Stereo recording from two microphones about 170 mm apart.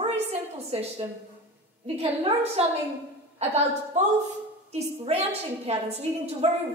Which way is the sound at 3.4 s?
40° right (ahead or behind).